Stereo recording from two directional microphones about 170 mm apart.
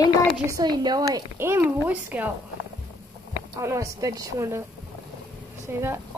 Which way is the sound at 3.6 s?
20° right (ahead or behind).